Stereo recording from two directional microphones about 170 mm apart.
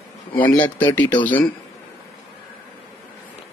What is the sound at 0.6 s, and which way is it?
Speech, 10° left (ahead or behind).